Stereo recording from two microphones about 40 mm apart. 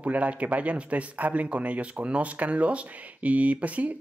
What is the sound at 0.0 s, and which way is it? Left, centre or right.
Speech, right.